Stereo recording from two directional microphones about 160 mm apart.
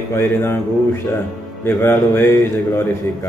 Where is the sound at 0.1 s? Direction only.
15° left (ahead or behind).